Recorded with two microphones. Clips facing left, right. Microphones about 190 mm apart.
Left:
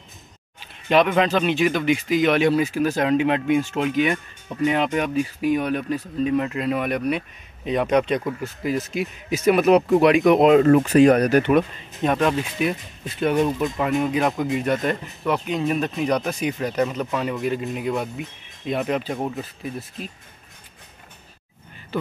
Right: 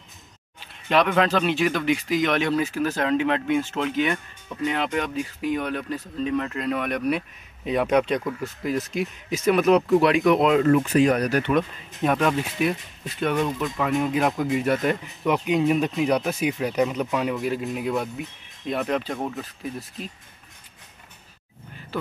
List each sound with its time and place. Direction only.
0.8 s speech: 5° left (ahead or behind); by 10.7 s 25° left (ahead or behind)
10.9 s speech: 65° left (ahead or behind)
12.0 s speech: centre (ahead or behind)